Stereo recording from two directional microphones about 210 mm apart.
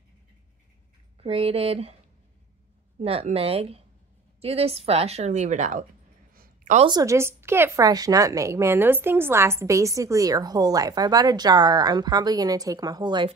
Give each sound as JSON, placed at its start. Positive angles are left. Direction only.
{"t": 1.2, "sound": "speech", "side_deg": -25}
{"t": 3.0, "sound": "a woman's voice", "side_deg": -30}
{"t": 6.3, "sound": "a sound", "side_deg": -40}
{"t": 6.9, "sound": "a woman's voice", "side_deg": -15}